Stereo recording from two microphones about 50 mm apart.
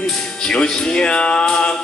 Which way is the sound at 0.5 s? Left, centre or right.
Centre.